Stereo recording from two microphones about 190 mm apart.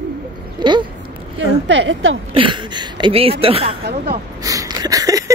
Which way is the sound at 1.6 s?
70° right (ahead or behind).